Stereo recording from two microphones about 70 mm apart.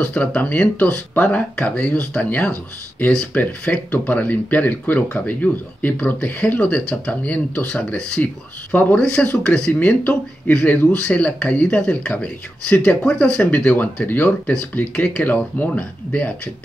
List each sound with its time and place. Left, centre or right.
0.0 s speech: centre